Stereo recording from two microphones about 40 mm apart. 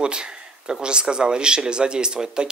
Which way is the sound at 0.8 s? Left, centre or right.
Right.